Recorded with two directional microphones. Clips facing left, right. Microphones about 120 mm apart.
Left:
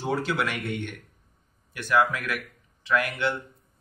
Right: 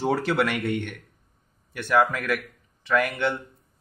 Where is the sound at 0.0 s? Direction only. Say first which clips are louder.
Right 4 dB; 65° right (ahead or behind).